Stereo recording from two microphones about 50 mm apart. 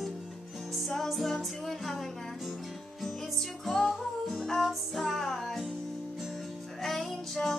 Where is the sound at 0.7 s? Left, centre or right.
Centre.